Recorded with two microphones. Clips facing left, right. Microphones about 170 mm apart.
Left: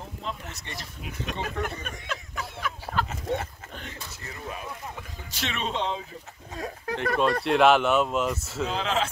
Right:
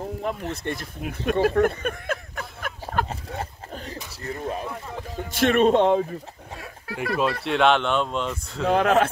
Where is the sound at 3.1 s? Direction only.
35° right (ahead or behind).